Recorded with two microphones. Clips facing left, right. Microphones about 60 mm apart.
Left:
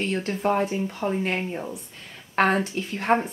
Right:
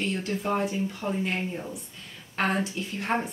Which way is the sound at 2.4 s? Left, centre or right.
Left.